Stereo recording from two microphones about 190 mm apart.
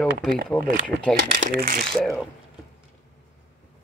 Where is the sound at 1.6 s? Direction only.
50° right (ahead or behind).